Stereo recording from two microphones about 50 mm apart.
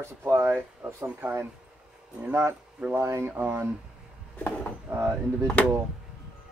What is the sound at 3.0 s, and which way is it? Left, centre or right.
Speech, right.